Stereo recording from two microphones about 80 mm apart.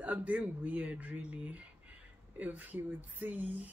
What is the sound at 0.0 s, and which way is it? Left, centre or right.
A woman's voice, centre.